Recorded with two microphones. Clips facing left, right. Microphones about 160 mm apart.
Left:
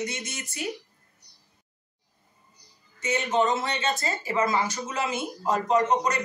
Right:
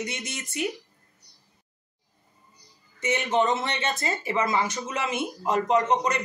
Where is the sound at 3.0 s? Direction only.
20° right (ahead or behind).